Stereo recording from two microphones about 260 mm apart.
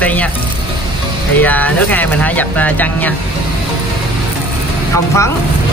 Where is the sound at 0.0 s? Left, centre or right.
Centre.